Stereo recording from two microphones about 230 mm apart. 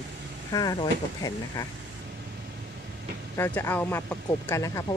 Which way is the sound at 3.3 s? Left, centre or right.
Centre.